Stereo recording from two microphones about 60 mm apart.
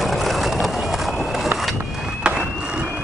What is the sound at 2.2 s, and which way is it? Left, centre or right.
Vehicle, centre.